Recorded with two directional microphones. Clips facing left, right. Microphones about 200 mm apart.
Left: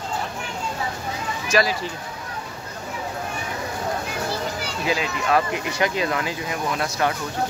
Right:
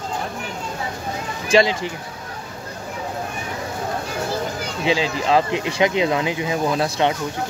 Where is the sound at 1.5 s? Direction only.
20° right (ahead or behind).